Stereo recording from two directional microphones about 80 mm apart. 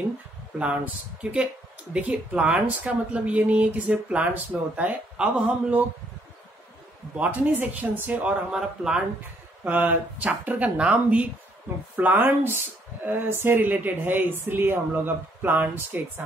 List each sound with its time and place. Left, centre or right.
0.6 s speech: centre
7.2 s speech: right
9.7 s speech: centre